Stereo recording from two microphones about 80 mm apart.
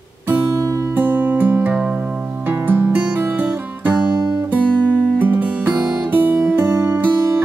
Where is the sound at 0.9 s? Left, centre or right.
Right.